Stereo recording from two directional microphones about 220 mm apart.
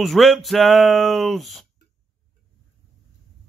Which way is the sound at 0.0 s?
Centre (ahead or behind).